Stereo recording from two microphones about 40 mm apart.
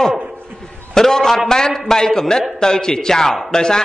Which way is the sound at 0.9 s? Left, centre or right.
Centre.